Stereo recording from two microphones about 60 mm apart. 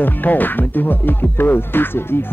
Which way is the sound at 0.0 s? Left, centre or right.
Left.